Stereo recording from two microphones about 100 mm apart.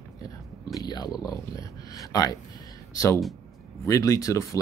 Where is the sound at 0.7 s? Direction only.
40° left (ahead or behind).